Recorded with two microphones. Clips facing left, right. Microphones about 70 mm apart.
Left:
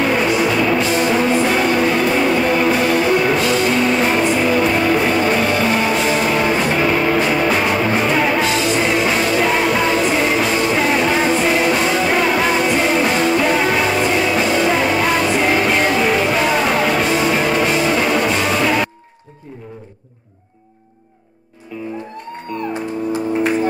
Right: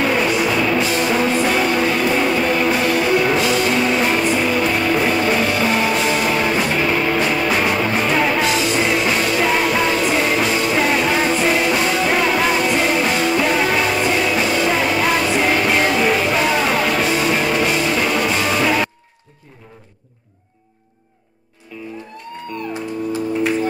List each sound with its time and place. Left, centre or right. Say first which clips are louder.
0.0 s music: left 1 dB; centre
23.1 s music: left 2 dB; left